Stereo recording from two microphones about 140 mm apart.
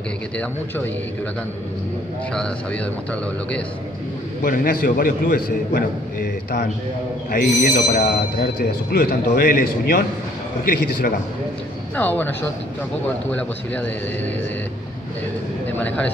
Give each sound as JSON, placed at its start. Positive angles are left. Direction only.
{"t": 2.3, "sound": "speech", "side_deg": 10}
{"t": 4.4, "sound": "a man's voice", "side_deg": 80}
{"t": 11.9, "sound": "speech", "side_deg": 10}